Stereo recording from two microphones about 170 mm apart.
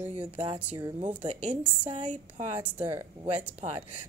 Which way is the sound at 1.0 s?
45° right (ahead or behind).